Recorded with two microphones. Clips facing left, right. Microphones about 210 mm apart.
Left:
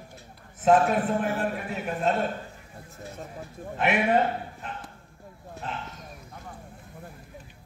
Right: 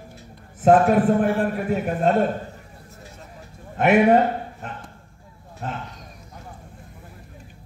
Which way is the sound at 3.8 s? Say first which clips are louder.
Right 8 dB; 45° right (ahead or behind).